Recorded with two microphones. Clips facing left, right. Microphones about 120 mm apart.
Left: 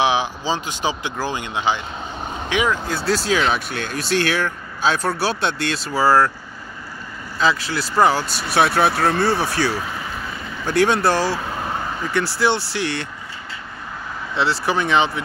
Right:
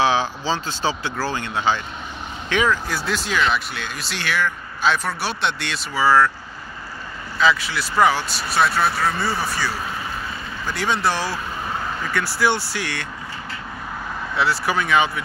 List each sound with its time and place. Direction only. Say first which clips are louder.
0.0 s speech: even; 15° left (ahead or behind)
3.3 s speech: left 1 dB; 50° left (ahead or behind)
7.3 s speech: even; 35° left (ahead or behind)
8.4 s speech: left 3 dB; 60° left (ahead or behind)
10.7 s speech: left 5 dB; 55° left (ahead or behind)
12.0 s speech: left 2 dB; 25° left (ahead or behind)
14.3 s speech: left 1 dB; 25° left (ahead or behind)